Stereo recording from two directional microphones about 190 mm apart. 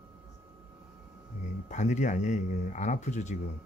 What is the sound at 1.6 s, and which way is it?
Speech, 40° left (ahead or behind).